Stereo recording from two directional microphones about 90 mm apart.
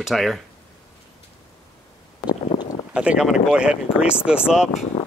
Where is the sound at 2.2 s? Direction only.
55° left (ahead or behind).